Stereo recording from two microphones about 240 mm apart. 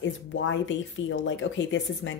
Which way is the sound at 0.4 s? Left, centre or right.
Left.